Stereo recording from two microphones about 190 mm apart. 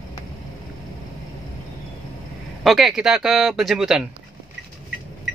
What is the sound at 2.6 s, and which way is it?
Speech, centre (ahead or behind).